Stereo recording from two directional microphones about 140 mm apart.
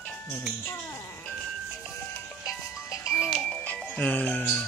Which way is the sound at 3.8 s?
5° left (ahead or behind).